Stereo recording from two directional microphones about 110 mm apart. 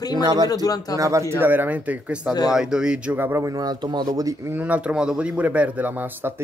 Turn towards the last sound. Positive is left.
turn(degrees=-20)  # may be behind; listen again after turning